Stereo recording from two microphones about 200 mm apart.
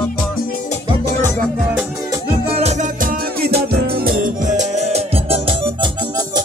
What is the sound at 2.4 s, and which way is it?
Music, 30° right (ahead or behind).